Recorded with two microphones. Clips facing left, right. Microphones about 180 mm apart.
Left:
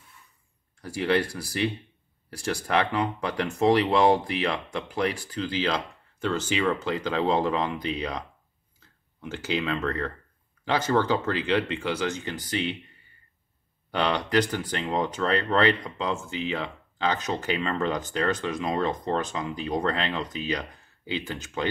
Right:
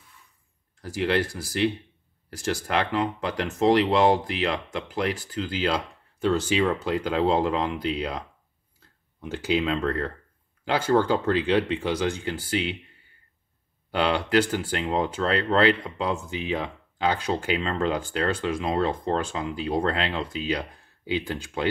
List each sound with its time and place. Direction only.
0.7 s speech: centre (ahead or behind)
2.9 s speech: centre (ahead or behind)
6.2 s speech: 15° right (ahead or behind)
9.2 s speech: 15° right (ahead or behind)
13.9 s speech: 10° right (ahead or behind)